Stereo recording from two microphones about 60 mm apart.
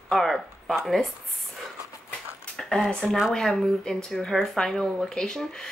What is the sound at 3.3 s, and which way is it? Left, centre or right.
Speech, centre.